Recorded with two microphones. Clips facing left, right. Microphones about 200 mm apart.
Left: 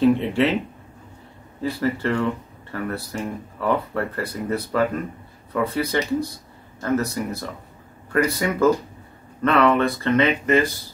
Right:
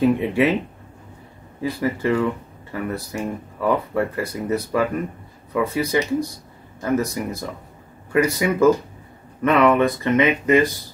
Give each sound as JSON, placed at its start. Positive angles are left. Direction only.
{"t": 0.0, "sound": "speech", "side_deg": -15}
{"t": 1.6, "sound": "speech", "side_deg": -10}